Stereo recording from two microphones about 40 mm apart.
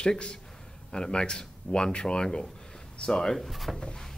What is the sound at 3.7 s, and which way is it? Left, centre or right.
Speech, centre.